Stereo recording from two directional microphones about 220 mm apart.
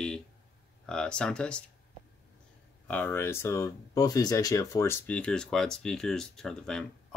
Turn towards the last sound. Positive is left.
turn(degrees=0)  # may be behind; listen again after turning